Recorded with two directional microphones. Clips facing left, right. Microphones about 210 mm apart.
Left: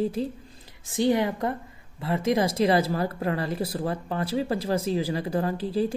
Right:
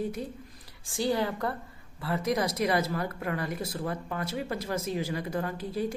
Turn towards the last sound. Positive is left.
turn(degrees=30)  # may be behind; listen again after turning